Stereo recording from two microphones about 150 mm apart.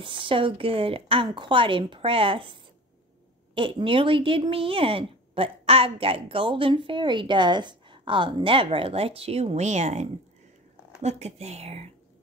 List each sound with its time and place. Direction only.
0.0 s speech: 35° right (ahead or behind)